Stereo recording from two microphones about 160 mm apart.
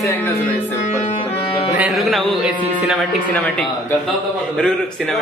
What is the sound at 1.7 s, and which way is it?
A man's voice, 5° right (ahead or behind).